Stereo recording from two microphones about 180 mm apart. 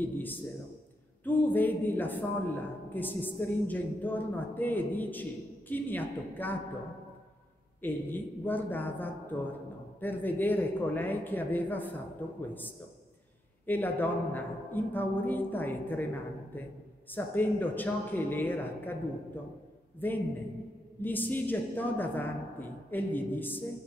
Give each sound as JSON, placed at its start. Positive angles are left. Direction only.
{"t": 0.0, "sound": "a man's voice", "side_deg": 10}
{"t": 7.8, "sound": "a man's voice", "side_deg": 10}
{"t": 13.7, "sound": "a man's voice", "side_deg": 10}